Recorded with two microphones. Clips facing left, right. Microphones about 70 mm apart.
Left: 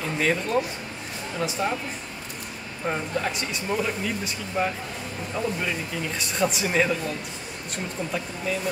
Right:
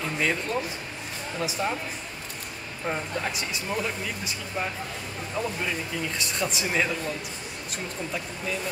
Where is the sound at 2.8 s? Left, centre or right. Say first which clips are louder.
Left 3 dB; centre.